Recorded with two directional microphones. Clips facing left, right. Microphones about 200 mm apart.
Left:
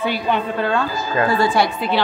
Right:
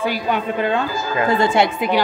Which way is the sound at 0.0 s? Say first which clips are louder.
Even; 15° right (ahead or behind).